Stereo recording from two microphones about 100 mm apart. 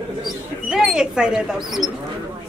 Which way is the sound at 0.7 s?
10° right (ahead or behind).